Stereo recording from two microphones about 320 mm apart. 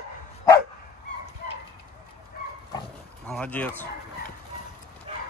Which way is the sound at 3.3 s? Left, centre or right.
Centre.